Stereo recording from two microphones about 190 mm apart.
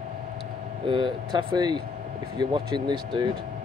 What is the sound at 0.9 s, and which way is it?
Speech, 25° right (ahead or behind).